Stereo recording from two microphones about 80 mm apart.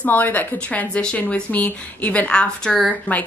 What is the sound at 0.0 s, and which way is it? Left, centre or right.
A woman's voice, left.